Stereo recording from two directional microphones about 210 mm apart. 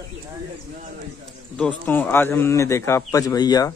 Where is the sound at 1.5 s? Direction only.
5° left (ahead or behind).